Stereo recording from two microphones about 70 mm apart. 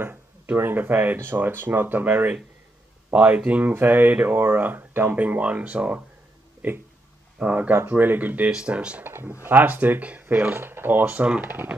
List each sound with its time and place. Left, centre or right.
0.0 s speech: right
8.5 s speech: centre
9.0 s speech: right